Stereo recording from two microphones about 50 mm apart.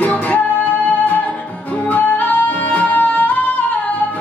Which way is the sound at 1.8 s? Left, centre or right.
Left.